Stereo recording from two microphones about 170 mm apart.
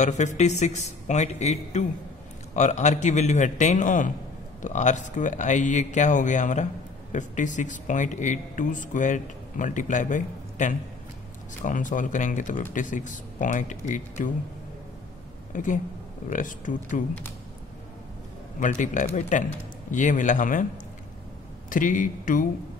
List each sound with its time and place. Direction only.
0.0 s speech: 45° left (ahead or behind)
15.5 s speech: 50° left (ahead or behind)
18.6 s speech: 50° left (ahead or behind)